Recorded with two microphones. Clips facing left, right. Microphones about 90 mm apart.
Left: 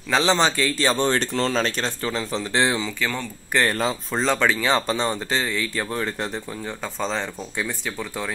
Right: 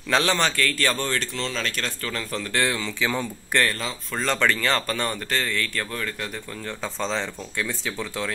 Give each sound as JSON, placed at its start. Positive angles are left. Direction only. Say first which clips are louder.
{"t": 0.1, "sound": "a man's voice", "louder": "left 3 dB", "side_deg": 15}
{"t": 1.8, "sound": "a man's voice", "louder": "left 4 dB", "side_deg": 20}
{"t": 3.0, "sound": "speech", "louder": "right 1 dB", "side_deg": -10}
{"t": 3.6, "sound": "speech", "louder": "left 5 dB", "side_deg": 45}
{"t": 4.3, "sound": "speech", "louder": "left 2 dB", "side_deg": 15}
{"t": 7.0, "sound": "speech", "louder": "left 1 dB", "side_deg": 10}